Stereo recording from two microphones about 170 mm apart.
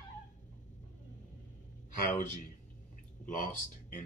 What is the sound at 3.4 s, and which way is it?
Speech, 50° left (ahead or behind).